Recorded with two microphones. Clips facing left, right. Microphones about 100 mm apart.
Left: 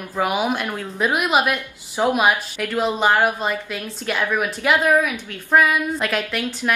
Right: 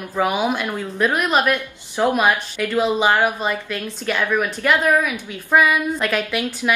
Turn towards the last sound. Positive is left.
turn(degrees=0)  # may be behind; listen again after turning